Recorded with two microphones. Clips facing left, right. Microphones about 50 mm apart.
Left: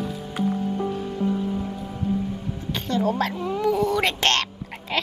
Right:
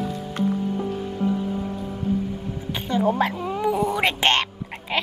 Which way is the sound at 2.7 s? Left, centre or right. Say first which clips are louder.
Right 2 dB; centre.